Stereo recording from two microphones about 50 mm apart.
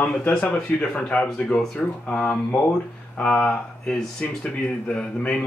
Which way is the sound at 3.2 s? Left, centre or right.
Centre.